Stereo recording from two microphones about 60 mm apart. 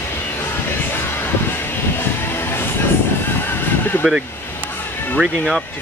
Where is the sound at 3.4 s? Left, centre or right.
Left.